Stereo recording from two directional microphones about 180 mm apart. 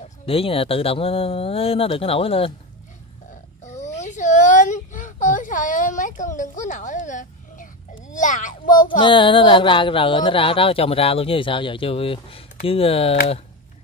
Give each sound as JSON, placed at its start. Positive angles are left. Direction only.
{"t": 0.0, "sound": "speech", "side_deg": 30}
{"t": 3.6, "sound": "a sound", "side_deg": 40}
{"t": 8.1, "sound": "a child's voice", "side_deg": 45}
{"t": 8.8, "sound": "music", "side_deg": 25}
{"t": 12.6, "sound": "speech", "side_deg": 30}